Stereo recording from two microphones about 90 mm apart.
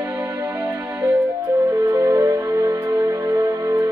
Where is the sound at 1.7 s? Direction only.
35° right (ahead or behind).